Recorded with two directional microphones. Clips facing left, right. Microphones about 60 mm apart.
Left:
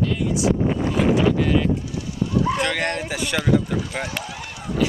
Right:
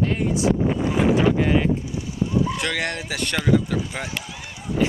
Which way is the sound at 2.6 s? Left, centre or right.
Centre.